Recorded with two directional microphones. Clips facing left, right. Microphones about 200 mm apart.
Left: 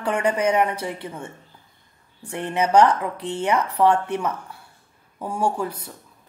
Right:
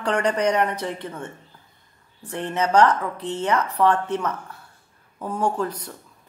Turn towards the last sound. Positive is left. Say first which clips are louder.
# even
turn(degrees=10)  # may be behind; listen again after turning